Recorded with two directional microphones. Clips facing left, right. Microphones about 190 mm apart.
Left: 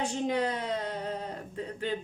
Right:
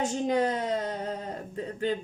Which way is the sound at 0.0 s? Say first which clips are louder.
Right 3 dB; 45° right (ahead or behind).